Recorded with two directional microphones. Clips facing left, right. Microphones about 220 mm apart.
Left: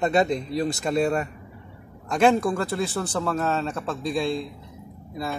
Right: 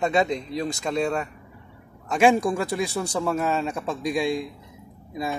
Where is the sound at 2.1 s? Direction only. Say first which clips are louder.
Even; 10° right (ahead or behind).